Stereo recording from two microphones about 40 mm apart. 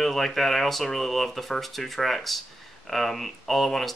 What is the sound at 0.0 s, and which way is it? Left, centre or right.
Speech, centre.